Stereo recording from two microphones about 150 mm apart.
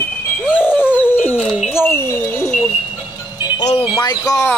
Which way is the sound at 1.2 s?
Centre (ahead or behind).